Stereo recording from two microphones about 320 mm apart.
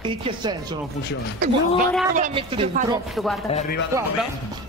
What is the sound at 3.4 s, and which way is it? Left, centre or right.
Speech, left.